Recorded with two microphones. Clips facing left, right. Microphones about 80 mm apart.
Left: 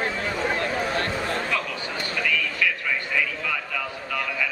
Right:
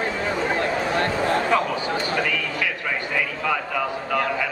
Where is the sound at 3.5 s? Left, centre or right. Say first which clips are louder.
Right 6 dB; right.